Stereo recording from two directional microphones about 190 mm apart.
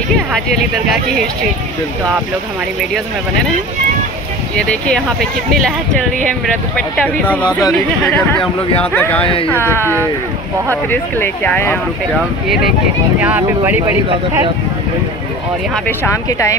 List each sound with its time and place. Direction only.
4.6 s speech: 5° left (ahead or behind)
6.2 s speech: 5° left (ahead or behind)
13.2 s speech: 10° right (ahead or behind)
16.3 s speech: 15° left (ahead or behind)